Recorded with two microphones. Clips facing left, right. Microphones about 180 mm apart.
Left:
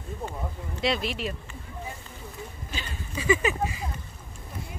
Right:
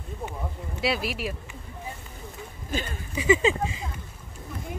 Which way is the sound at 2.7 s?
50° right (ahead or behind).